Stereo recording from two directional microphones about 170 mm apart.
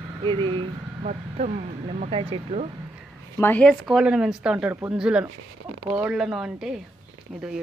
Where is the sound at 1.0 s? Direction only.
45° right (ahead or behind).